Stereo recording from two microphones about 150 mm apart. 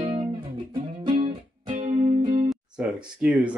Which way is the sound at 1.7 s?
45° right (ahead or behind).